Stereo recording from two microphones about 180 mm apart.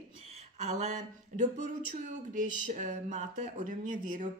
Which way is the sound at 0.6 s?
45° right (ahead or behind).